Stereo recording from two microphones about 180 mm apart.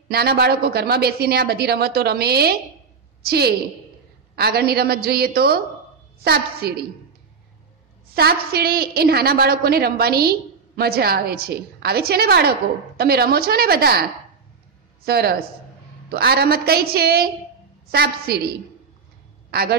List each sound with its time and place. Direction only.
0.1 s a woman's voice: 60° right (ahead or behind)
8.1 s a woman's voice: 60° right (ahead or behind)
15.0 s a woman's voice: 60° right (ahead or behind)
19.5 s a woman's voice: 60° right (ahead or behind)